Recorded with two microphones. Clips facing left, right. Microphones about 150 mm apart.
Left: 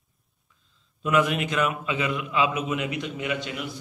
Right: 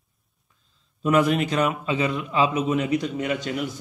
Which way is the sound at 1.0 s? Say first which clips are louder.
Right 3 dB; 35° right (ahead or behind).